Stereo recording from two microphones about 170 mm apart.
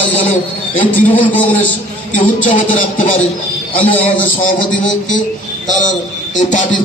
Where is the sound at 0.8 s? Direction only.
55° left (ahead or behind).